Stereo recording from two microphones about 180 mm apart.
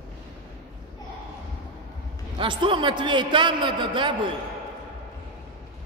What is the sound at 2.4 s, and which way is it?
A man's voice, 30° right (ahead or behind).